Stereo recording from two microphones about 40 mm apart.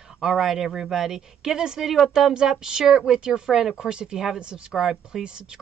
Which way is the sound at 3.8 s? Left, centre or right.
Right.